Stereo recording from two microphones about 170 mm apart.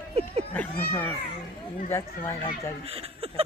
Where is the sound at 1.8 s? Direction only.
15° left (ahead or behind).